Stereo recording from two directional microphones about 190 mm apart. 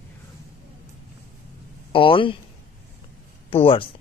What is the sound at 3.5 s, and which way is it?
Speech, 30° left (ahead or behind).